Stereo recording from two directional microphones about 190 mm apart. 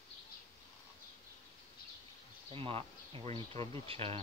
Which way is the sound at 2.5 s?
30° right (ahead or behind).